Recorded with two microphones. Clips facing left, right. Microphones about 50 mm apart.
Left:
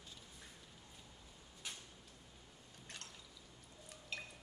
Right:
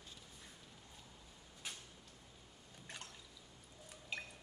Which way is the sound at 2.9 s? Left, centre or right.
Centre.